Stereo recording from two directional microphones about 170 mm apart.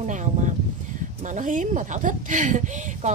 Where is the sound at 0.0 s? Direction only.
45° right (ahead or behind).